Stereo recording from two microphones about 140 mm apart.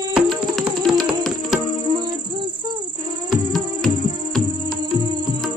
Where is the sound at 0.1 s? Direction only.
5° right (ahead or behind).